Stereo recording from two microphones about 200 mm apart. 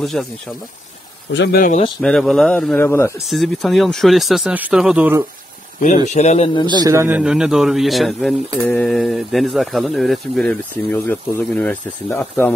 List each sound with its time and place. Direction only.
0.0 s speech: centre (ahead or behind)
1.3 s speech: 60° left (ahead or behind)
1.6 s a man's voice: 35° left (ahead or behind)
2.0 s speech: centre (ahead or behind)
3.3 s speech: centre (ahead or behind)
6.0 s a man's voice: 35° left (ahead or behind)
6.8 s speech: 15° right (ahead or behind); by 12.5 s 10° left (ahead or behind)